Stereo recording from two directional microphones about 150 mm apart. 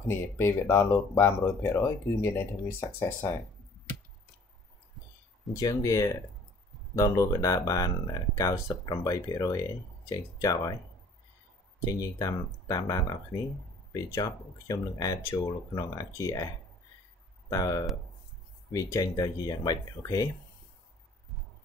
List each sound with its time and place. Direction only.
0.4 s speech: 15° left (ahead or behind)
5.5 s speech: 25° left (ahead or behind)
11.9 s speech: 20° left (ahead or behind)
17.5 s speech: 25° left (ahead or behind)